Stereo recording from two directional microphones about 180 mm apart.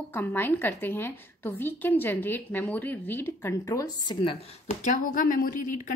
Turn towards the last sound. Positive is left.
turn(degrees=45)  # may be behind; listen again after turning